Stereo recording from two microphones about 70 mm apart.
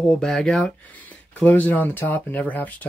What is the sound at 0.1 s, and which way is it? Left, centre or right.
Speech, centre.